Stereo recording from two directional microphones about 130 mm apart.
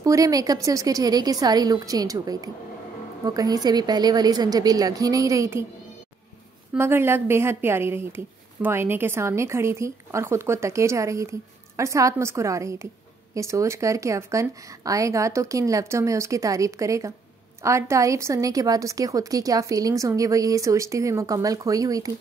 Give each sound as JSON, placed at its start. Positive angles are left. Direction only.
{"t": 0.0, "sound": "speech", "side_deg": -25}
{"t": 6.8, "sound": "speech", "side_deg": -20}